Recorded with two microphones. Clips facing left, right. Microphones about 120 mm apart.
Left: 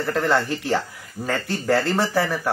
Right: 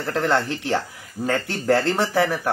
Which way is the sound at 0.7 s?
15° right (ahead or behind).